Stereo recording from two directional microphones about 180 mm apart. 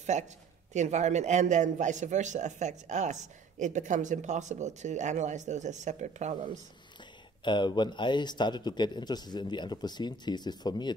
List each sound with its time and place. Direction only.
0.1 s speech: 40° right (ahead or behind)
7.4 s speech: 25° left (ahead or behind)